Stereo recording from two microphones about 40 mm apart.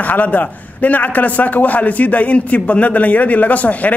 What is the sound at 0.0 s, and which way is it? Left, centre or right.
A man's voice, left.